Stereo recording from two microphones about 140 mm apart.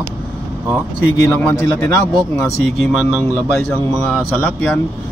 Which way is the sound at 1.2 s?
20° left (ahead or behind).